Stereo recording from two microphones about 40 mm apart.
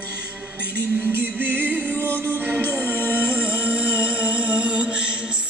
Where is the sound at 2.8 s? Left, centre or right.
Left.